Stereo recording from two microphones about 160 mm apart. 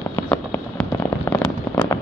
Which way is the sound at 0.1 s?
10° left (ahead or behind).